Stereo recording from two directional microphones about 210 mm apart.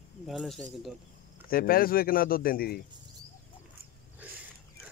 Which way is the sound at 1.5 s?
45° left (ahead or behind).